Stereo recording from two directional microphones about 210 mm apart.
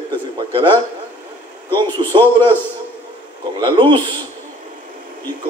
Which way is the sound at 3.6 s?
25° right (ahead or behind).